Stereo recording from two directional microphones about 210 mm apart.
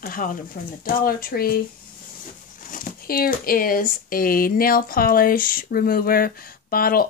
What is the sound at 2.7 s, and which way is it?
Speech, 45° left (ahead or behind).